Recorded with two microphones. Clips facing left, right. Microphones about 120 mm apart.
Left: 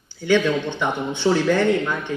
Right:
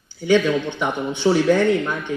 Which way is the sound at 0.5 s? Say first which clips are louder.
Right 1 dB; 15° right (ahead or behind).